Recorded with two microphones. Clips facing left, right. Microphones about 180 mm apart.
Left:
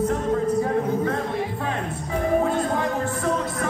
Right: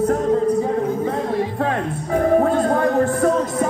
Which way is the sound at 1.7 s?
50° right (ahead or behind).